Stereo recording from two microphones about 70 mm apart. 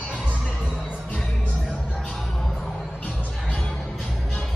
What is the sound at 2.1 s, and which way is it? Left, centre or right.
Music, centre.